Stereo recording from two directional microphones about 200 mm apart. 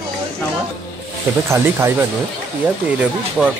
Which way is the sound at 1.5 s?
10° right (ahead or behind).